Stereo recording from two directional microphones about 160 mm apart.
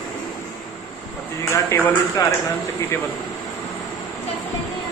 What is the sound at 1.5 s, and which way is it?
Speech, 15° left (ahead or behind).